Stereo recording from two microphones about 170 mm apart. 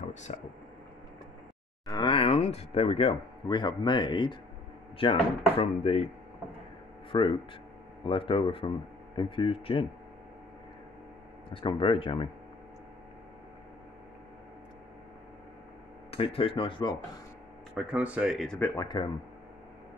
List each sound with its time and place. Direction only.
0.0 s a sound: 45° left (ahead or behind)
1.9 s speech: 25° left (ahead or behind)
7.1 s speech: 30° left (ahead or behind)
11.5 s speech: 30° left (ahead or behind)
16.1 s speech: 35° left (ahead or behind)
17.9 s speech: 10° right (ahead or behind)
18.6 s speech: 20° left (ahead or behind)